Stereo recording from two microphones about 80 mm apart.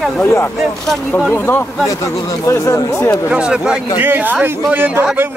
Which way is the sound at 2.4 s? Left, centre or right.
Left.